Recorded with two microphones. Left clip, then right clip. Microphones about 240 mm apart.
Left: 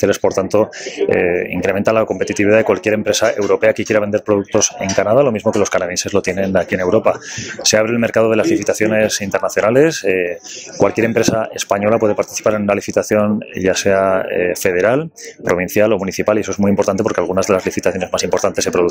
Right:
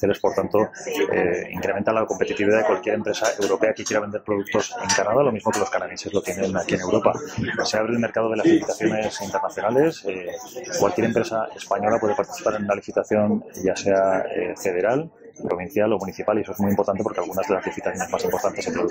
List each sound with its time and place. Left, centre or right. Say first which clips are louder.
0.0 s speech: left 6 dB; left